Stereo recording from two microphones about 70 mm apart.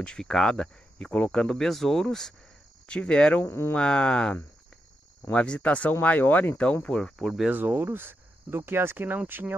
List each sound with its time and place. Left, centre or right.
0.0 s speech: centre
3.4 s speech: left
3.7 s speech: centre
7.4 s speech: right